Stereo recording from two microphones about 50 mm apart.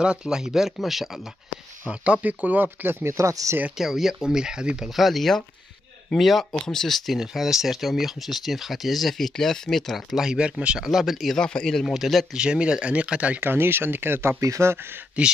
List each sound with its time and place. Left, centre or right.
0.0 s speech: centre
2.2 s speech: right
3.0 s speech: right
3.7 s speech: centre
4.8 s speech: centre
7.2 s speech: centre
10.1 s speech: centre
10.8 s speech: centre
11.3 s speech: centre
11.8 s speech: centre
12.3 s speech: centre
13.4 s speech: right
14.4 s speech: right
15.2 s speech: right